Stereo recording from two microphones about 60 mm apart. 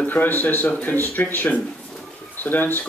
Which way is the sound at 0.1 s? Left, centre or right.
Left.